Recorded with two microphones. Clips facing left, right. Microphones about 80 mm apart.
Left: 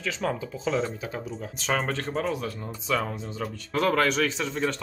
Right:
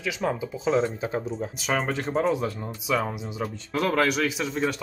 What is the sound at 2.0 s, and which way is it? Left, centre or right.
Speech, right.